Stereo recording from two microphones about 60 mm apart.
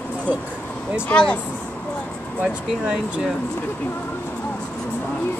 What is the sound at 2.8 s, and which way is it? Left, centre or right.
Speech, centre.